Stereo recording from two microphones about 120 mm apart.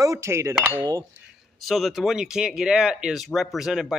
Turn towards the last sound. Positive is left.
turn(degrees=-5)  # may be behind; listen again after turning